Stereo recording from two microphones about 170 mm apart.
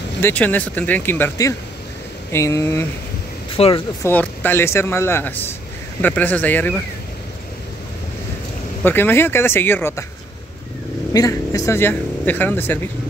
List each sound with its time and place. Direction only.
0.2 s speech: 10° left (ahead or behind)
3.5 s speech: 35° left (ahead or behind)
4.0 s speech: 10° left (ahead or behind)
8.8 s speech: 10° left (ahead or behind)
11.1 s speech: 20° left (ahead or behind)